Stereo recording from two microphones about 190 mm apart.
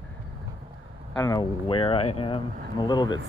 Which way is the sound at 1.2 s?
20° left (ahead or behind).